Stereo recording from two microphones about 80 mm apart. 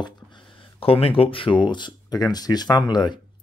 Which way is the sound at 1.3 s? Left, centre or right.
Left.